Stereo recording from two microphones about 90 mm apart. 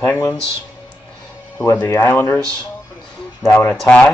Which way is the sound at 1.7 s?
30° left (ahead or behind).